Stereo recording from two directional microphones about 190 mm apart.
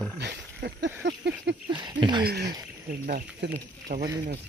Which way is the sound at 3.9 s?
45° right (ahead or behind).